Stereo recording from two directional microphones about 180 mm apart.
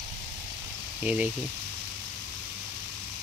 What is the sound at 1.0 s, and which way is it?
Speech, 10° right (ahead or behind).